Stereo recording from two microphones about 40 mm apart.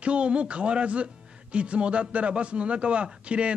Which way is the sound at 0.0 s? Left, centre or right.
Right.